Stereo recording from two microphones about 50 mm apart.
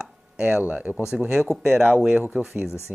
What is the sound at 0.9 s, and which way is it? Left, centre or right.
Speech, centre.